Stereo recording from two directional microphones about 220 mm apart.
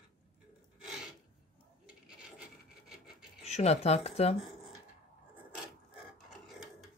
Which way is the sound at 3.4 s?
30° left (ahead or behind).